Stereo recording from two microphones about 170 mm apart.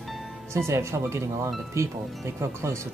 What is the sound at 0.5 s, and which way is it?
Speech, 15° right (ahead or behind).